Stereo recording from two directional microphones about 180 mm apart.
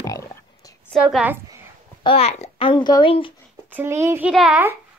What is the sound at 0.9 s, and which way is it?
Speech, centre (ahead or behind).